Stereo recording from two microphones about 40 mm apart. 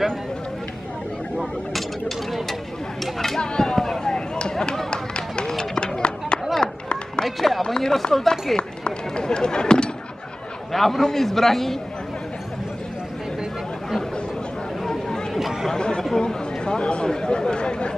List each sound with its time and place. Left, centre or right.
1.4 s a sound: centre
3.2 s speech: centre
4.9 s run: left
7.2 s speech: centre
7.6 s speech: centre
8.5 s speech: left
10.7 s speech: centre
14.9 s a sound: centre
15.3 s chatter: centre
16.2 s speech: left